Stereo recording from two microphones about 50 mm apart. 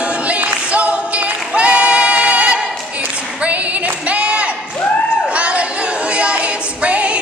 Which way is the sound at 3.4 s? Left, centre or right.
Right.